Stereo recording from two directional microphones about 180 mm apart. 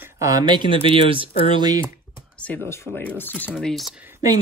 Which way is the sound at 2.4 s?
10° left (ahead or behind).